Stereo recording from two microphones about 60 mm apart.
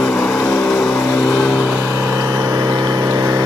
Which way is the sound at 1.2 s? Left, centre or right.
Centre.